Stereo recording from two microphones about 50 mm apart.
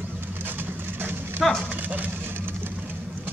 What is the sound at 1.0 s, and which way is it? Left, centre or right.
Clip-clop, right.